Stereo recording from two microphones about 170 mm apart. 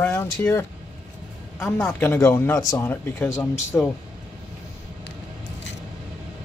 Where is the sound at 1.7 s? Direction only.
15° left (ahead or behind).